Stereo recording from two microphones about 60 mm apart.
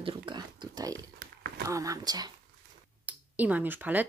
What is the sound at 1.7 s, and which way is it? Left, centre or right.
Speech, right.